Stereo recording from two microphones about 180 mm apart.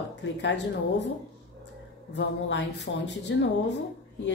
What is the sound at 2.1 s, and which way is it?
A woman's voice, 80° left.